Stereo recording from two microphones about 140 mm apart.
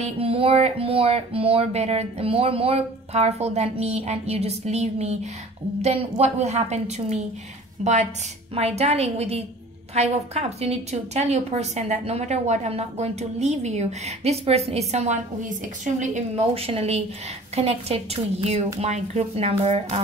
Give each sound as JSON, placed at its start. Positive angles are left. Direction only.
{"t": 0.0, "sound": "a woman's voice", "side_deg": -45}
{"t": 15.6, "sound": "a woman's voice", "side_deg": -65}
{"t": 16.5, "sound": "speech", "side_deg": -45}